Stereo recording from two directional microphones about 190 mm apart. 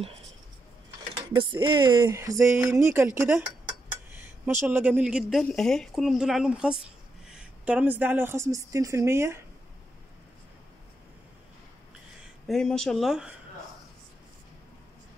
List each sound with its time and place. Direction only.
1.3 s speech: 25° right (ahead or behind)
4.5 s a woman's voice: 10° right (ahead or behind)
12.4 s speech: 5° left (ahead or behind)